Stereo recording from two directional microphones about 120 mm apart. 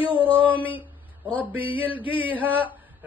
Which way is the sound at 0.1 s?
15° left (ahead or behind).